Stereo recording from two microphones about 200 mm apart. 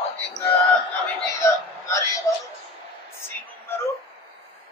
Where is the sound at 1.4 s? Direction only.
15° left (ahead or behind).